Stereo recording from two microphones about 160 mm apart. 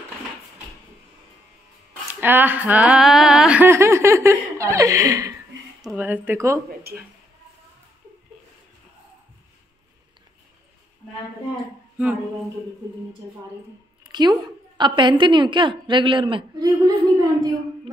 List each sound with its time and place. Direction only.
2.1 s speech: 10° right (ahead or behind)
5.9 s speech: 10° right (ahead or behind)
14.1 s a woman's voice: 25° right (ahead or behind)